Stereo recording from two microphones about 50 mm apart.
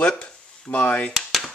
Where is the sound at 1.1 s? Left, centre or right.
Centre.